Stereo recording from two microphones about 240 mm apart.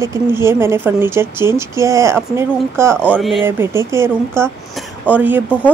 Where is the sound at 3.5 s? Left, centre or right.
Centre.